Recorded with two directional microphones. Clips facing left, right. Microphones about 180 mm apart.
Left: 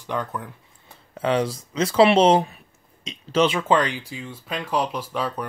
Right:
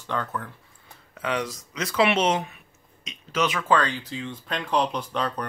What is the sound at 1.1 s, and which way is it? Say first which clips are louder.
Speech: left 6 dB; 30° left (ahead or behind).